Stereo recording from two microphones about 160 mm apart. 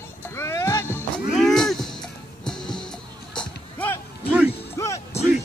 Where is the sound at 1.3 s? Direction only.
Centre (ahead or behind).